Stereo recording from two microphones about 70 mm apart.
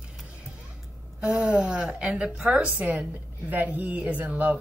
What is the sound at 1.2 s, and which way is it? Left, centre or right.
Speech, centre.